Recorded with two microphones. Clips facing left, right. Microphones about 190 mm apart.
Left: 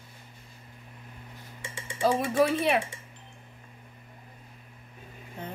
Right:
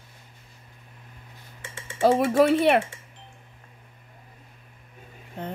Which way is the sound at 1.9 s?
60° right (ahead or behind).